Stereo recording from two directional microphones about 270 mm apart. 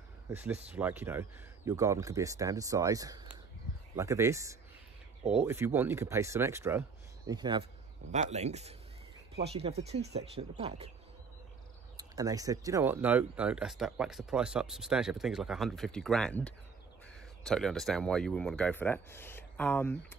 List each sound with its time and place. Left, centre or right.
0.3 s speech: centre; by 10.9 s right
12.0 s speech: centre